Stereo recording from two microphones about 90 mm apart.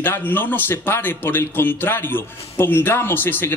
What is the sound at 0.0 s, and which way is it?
A man's voice, 25° left (ahead or behind).